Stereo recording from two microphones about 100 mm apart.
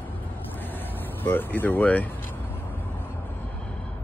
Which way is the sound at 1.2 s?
20° left (ahead or behind).